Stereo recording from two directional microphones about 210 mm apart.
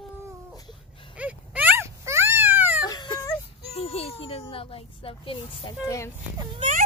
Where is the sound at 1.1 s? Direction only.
5° right (ahead or behind).